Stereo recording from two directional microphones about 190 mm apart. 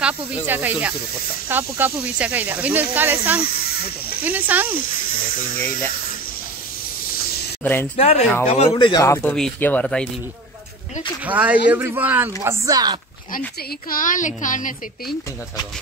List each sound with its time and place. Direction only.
0.0 s speech: 10° right (ahead or behind)
5.6 s speech: 10° left (ahead or behind)
7.6 s speech: 10° left (ahead or behind)
7.9 s speech: 35° left (ahead or behind)
9.0 s speech: 10° left (ahead or behind)
11.2 s speech: 5° right (ahead or behind)
13.8 s a child's voice: 45° left (ahead or behind)